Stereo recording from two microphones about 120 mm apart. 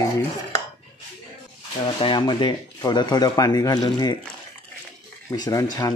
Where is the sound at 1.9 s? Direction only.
45° left (ahead or behind).